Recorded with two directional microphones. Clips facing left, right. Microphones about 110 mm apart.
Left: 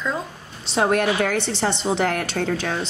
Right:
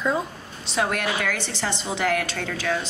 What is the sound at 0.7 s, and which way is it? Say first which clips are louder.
A woman's voice: left 5 dB; 35° left (ahead or behind).